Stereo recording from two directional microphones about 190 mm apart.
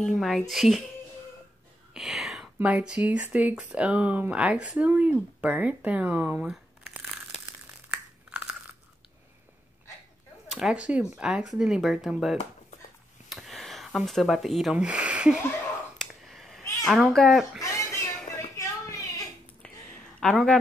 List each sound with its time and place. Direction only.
0.0 s speech: centre (ahead or behind)
2.0 s speech: centre (ahead or behind)
7.9 s crunch: 5° right (ahead or behind)
10.5 s speech: 5° right (ahead or behind)
13.3 s a sound: centre (ahead or behind)
16.8 s speech: centre (ahead or behind)
17.6 s a sound: 15° left (ahead or behind)
20.2 s speech: 5° left (ahead or behind)